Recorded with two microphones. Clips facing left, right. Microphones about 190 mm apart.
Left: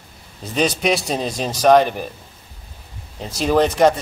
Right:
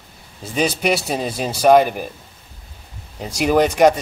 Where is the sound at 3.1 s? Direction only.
10° right (ahead or behind).